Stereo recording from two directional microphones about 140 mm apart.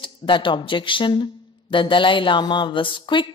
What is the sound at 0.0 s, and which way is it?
A woman's voice, 35° left (ahead or behind).